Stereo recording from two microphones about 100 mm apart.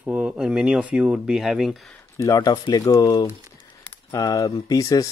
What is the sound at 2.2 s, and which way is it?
Speech, 40° left (ahead or behind).